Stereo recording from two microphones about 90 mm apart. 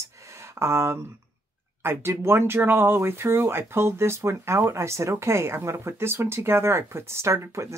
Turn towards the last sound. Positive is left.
turn(degrees=-30)  # may be behind; listen again after turning